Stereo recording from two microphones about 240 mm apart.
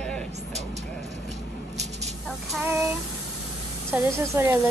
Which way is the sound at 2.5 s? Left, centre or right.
Centre.